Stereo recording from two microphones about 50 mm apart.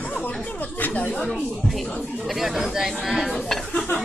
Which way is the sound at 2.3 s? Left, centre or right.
Centre.